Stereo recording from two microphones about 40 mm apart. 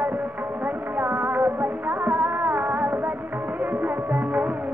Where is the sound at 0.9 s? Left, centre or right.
Right.